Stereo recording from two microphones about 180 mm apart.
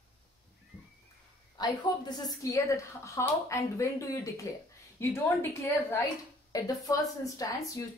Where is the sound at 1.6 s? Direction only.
25° left (ahead or behind).